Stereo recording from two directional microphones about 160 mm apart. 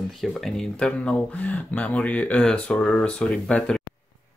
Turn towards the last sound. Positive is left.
turn(degrees=5)  # may be behind; listen again after turning